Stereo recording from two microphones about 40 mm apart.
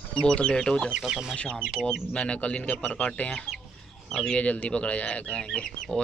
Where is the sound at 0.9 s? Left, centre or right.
Right.